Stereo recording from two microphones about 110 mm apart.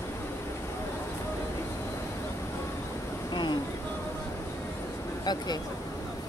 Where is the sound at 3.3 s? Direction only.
40° left (ahead or behind).